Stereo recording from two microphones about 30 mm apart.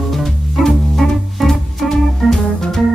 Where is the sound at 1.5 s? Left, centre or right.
Centre.